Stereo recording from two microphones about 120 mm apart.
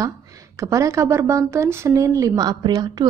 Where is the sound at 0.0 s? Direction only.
30° right (ahead or behind).